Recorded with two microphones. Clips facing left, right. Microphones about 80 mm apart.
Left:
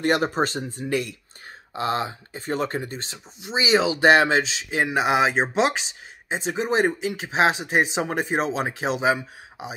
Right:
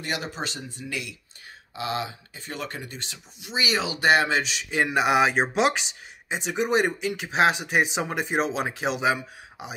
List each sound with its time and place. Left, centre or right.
0.0 s speech: left